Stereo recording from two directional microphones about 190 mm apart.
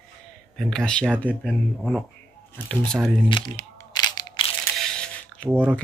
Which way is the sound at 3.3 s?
25° left (ahead or behind).